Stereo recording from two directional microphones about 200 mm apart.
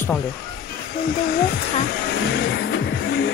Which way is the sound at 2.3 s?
60° left (ahead or behind).